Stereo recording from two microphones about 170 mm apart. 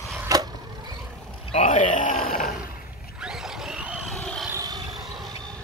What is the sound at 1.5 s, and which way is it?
Speech, 45° left (ahead or behind).